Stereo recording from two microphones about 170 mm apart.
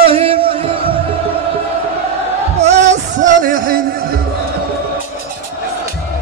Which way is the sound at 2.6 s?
40° right (ahead or behind).